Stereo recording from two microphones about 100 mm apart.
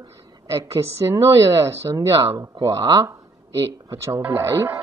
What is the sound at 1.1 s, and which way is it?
Speech, 30° right (ahead or behind).